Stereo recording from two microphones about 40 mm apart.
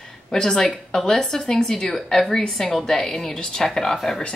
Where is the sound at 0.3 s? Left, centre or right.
Centre.